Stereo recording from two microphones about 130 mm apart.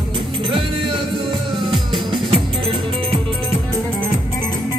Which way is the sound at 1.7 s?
45° right (ahead or behind).